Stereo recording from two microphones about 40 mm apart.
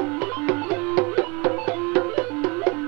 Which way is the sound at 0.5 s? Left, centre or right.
Centre.